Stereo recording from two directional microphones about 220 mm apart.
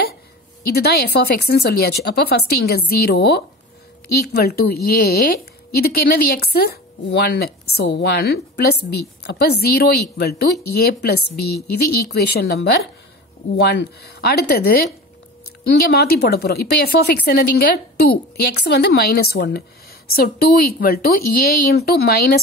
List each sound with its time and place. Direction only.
0.7 s a woman's voice: 45° left (ahead or behind)